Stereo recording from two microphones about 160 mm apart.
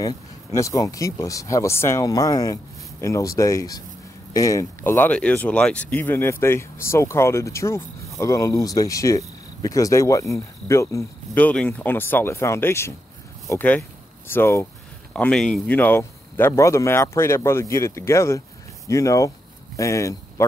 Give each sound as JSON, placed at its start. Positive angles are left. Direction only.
{"t": 0.0, "sound": "speech", "side_deg": 20}